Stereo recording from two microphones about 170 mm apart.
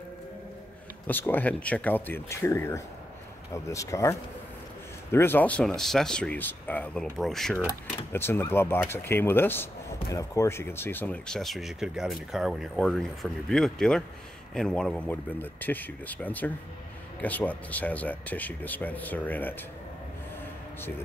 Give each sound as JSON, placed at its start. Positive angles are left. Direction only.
{"t": 1.0, "sound": "speech", "side_deg": 10}
{"t": 8.1, "sound": "speech", "side_deg": 15}